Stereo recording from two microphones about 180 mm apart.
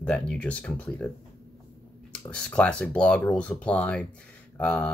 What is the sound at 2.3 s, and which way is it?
Speech, 5° left (ahead or behind).